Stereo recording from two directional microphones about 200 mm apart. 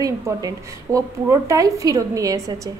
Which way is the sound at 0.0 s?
15° right (ahead or behind).